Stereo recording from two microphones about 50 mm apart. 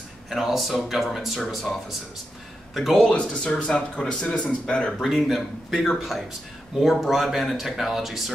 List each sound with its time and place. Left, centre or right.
0.3 s speech: centre
3.1 s speech: centre
5.0 s speech: centre